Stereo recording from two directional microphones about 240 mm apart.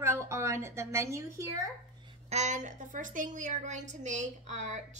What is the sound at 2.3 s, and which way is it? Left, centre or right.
A woman's voice, right.